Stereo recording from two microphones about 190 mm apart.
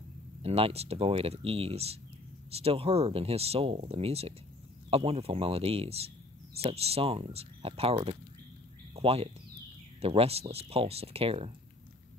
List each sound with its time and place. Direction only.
0.4 s speech: 30° right (ahead or behind)